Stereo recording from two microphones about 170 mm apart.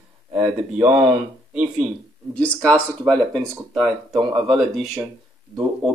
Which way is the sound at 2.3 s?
5° left (ahead or behind).